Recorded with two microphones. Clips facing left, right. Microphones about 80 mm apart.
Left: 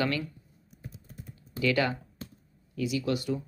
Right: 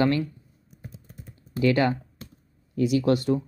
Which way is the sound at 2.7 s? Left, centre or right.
Right.